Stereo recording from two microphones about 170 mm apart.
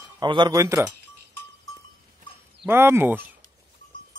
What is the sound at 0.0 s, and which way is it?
Speech, 25° right (ahead or behind).